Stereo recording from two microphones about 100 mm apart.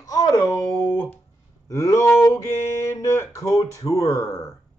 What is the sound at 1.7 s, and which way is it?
Speech, 35° left (ahead or behind).